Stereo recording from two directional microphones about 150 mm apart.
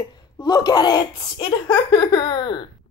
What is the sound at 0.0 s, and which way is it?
A woman's voice, 30° left (ahead or behind).